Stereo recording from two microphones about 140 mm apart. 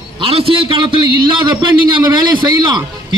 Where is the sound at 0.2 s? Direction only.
40° right (ahead or behind).